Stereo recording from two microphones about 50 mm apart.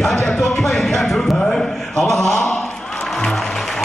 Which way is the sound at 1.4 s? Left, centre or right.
Centre.